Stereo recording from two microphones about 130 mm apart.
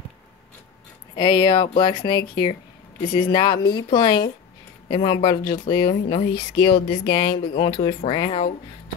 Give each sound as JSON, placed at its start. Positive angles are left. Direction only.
{"t": 1.1, "sound": "speech", "side_deg": 35}